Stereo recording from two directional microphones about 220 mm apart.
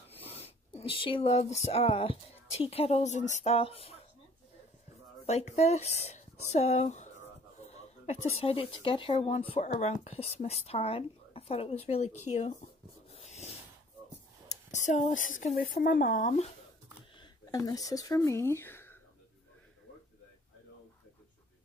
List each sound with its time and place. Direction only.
0.4 s speech: 25° left (ahead or behind)
5.2 s speech: 30° left (ahead or behind)
13.1 s dog: 30° left (ahead or behind)
14.5 s speech: 35° left (ahead or behind)
17.2 s speech: 15° left (ahead or behind)